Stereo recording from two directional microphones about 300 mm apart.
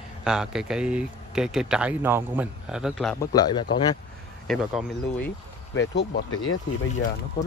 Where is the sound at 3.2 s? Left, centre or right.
Centre.